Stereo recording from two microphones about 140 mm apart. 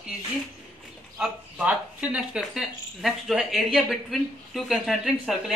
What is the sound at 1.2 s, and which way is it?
Speech, 10° right (ahead or behind).